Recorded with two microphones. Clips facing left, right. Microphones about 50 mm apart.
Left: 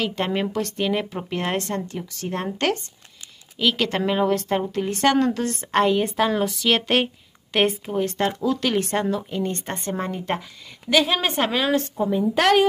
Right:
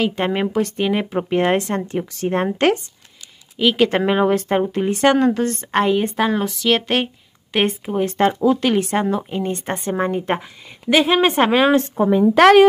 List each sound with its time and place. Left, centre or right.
0.0 s speech: centre
3.5 s a woman's voice: centre
7.8 s speech: centre
8.2 s speech: right
12.0 s a woman's voice: right